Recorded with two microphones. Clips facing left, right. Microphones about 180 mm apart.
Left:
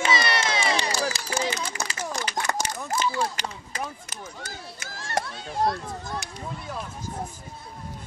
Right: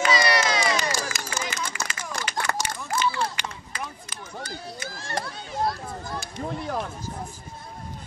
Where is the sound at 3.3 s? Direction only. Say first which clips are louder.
Left 2 dB; 40° left (ahead or behind).